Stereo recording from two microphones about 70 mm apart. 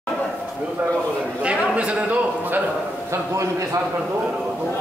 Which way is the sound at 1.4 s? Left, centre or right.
Centre.